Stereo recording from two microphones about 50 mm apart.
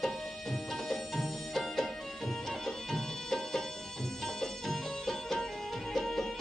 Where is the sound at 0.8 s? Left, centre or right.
Centre.